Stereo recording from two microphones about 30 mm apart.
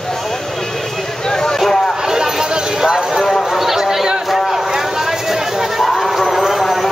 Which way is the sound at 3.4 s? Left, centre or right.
Centre.